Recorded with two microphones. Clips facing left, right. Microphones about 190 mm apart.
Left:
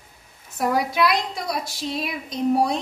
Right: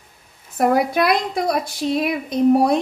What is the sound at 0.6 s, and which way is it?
A woman's voice, 55° right (ahead or behind).